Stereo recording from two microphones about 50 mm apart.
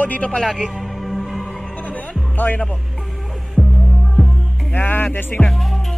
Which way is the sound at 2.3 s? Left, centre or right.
Left.